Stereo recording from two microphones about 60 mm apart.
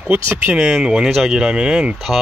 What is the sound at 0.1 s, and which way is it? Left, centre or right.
Speech, right.